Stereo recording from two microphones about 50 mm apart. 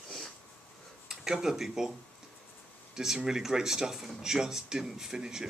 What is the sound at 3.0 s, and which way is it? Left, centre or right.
Speech, centre.